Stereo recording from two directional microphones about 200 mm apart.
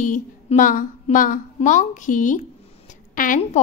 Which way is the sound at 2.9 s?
40° left (ahead or behind).